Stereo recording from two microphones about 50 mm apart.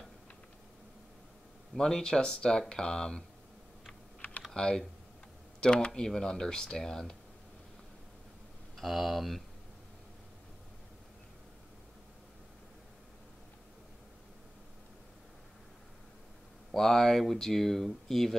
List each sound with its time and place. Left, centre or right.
1.8 s speech: centre
4.6 s speech: centre
8.7 s speech: centre
16.7 s speech: centre